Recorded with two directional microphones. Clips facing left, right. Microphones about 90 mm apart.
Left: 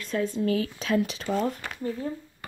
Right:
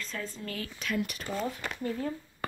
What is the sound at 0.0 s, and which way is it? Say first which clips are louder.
Speech: left 11 dB; 65° left (ahead or behind).